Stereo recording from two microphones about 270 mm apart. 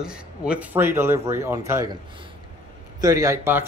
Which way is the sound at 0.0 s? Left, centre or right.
Centre.